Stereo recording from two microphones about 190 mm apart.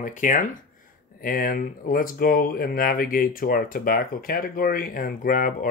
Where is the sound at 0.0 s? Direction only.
45° left (ahead or behind).